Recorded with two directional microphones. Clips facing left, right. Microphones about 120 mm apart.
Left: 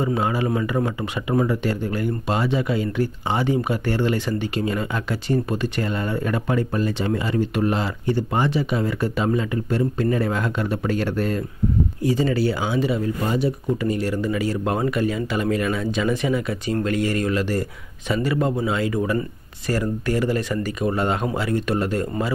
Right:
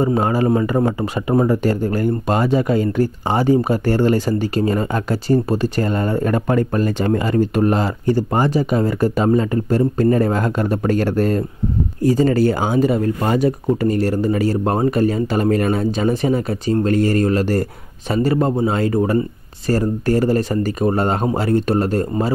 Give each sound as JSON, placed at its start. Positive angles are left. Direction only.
{"t": 0.0, "sound": "speech", "side_deg": -40}